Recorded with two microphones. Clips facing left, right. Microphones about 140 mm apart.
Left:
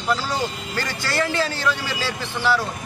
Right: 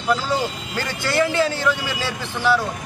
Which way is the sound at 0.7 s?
15° right (ahead or behind).